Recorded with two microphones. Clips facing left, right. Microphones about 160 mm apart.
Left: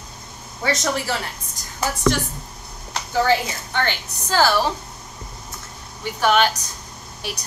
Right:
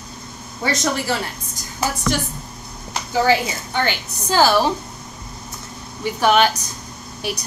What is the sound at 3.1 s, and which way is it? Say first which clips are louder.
A woman's voice: right 2 dB; 5° right (ahead or behind).